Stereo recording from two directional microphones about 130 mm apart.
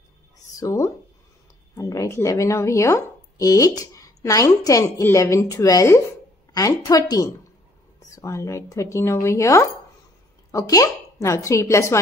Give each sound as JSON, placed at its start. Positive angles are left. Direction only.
{"t": 0.6, "sound": "speech", "side_deg": 25}